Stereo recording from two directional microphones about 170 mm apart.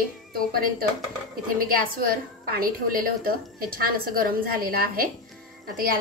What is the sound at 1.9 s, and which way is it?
A woman's voice, 60° right (ahead or behind).